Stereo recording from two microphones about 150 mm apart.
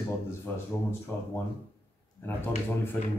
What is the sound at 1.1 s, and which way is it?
Speech, 15° left (ahead or behind).